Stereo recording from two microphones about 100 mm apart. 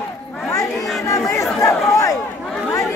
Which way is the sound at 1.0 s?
30° left (ahead or behind).